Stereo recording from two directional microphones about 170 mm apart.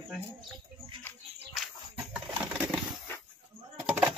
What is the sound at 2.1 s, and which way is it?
Coin, 5° right (ahead or behind).